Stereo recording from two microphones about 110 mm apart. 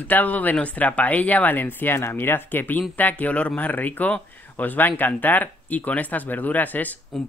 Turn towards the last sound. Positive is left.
turn(degrees=5)  # may be behind; listen again after turning